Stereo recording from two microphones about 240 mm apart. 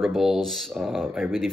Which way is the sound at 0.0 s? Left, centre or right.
Centre.